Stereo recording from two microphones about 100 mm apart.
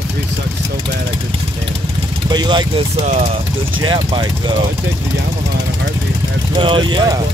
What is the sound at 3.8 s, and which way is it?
Speech, 50° right (ahead or behind).